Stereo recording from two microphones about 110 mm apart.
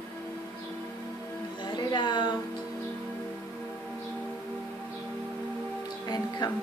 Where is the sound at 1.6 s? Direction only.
40° left (ahead or behind).